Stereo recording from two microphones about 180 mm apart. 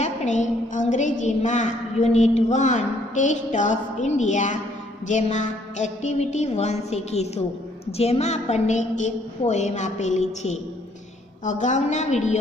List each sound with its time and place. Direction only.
0.0 s a woman's voice: 40° left (ahead or behind)